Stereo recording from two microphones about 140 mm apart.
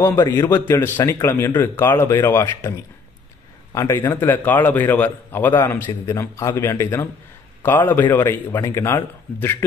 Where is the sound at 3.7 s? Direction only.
20° left (ahead or behind).